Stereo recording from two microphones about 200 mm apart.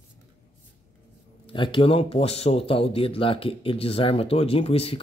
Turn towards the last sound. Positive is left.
turn(degrees=30)  # may be behind; listen again after turning